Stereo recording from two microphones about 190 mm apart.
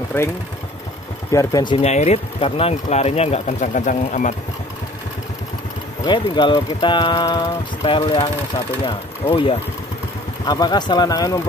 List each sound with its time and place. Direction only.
0.1 s speech: 15° left (ahead or behind)
1.3 s speech: 20° left (ahead or behind); by 4.4 s 40° left (ahead or behind)
6.0 s speech: 25° left (ahead or behind)
10.4 s speech: 20° left (ahead or behind)